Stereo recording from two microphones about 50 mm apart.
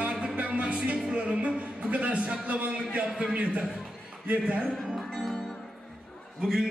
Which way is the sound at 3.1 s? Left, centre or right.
Centre.